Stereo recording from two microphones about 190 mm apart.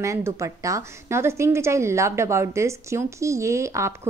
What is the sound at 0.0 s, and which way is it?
A woman's voice, 15° right (ahead or behind).